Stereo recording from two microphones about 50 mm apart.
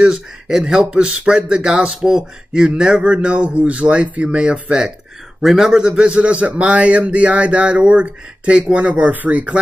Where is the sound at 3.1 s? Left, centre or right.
Right.